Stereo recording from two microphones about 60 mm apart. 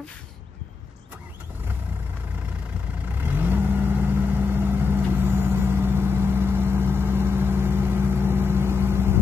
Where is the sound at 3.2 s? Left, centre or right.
Right.